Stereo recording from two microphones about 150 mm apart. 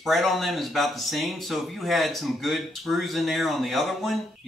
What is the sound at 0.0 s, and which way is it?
Speech, centre (ahead or behind).